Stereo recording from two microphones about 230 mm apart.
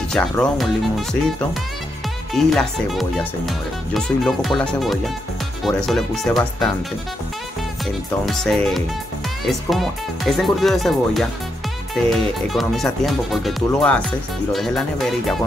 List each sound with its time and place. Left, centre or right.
0.1 s speech: centre
2.3 s speech: centre
8.3 s speech: centre